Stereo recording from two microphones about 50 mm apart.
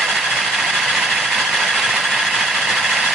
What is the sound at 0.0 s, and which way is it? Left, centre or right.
Vehicle, centre.